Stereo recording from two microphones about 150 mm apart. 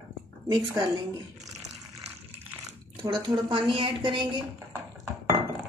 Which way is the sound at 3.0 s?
35° right (ahead or behind).